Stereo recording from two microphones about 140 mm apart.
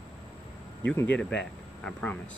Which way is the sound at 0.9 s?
10° left (ahead or behind).